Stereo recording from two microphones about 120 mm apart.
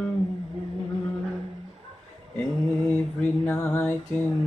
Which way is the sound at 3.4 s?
20° left (ahead or behind).